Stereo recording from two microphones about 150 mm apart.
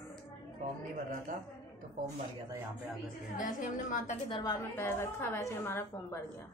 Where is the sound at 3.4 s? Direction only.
60° left (ahead or behind).